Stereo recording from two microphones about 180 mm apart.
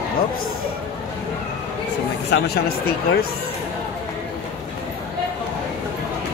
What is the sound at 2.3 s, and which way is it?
Speech, 60° left (ahead or behind).